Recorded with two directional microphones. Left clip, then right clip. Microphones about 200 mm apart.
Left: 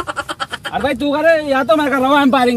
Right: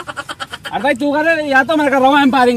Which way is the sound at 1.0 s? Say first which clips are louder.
Left 1 dB; 30° left (ahead or behind).